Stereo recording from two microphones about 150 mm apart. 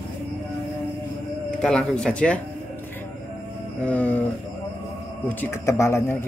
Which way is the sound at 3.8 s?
10° left (ahead or behind).